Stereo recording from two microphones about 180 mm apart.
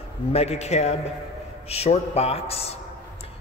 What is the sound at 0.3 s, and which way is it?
A man's voice, 35° left (ahead or behind).